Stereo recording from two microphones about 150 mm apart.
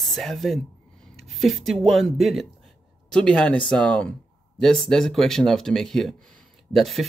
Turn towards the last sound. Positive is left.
turn(degrees=0)  # may be behind; listen again after turning